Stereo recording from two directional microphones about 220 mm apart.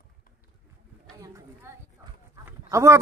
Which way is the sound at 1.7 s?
10° right (ahead or behind).